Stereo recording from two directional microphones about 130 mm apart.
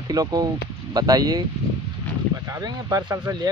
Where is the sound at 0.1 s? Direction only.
30° right (ahead or behind).